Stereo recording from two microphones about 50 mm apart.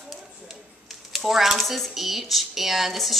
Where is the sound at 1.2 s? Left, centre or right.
Centre.